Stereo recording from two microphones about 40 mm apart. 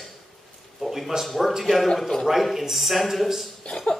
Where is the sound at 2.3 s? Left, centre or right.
Centre.